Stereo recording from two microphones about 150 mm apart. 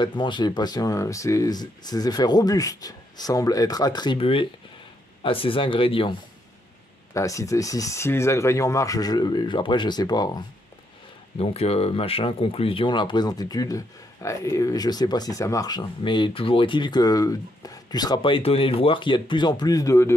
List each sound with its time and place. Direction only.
0.2 s speech: 30° left (ahead or behind)
7.2 s speech: 20° left (ahead or behind)
11.3 s speech: 40° left (ahead or behind); by 20.2 s 20° left (ahead or behind)